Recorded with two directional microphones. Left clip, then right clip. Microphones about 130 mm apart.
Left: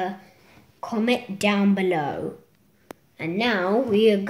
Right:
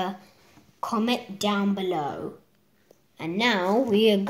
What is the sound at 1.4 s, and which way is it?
Speech, 60° left (ahead or behind).